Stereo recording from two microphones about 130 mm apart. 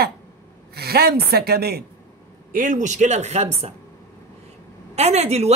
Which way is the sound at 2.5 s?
85° right.